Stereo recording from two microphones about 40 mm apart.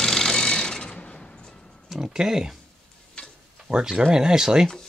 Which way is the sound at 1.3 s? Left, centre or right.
Centre.